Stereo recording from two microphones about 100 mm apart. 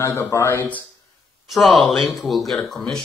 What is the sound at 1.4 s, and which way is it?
Speech, centre (ahead or behind).